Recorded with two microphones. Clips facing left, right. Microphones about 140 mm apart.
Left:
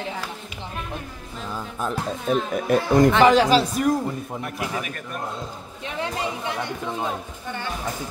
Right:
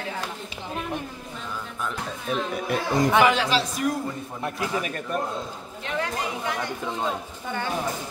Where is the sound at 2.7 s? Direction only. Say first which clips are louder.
Left 5 dB; 45° left (ahead or behind).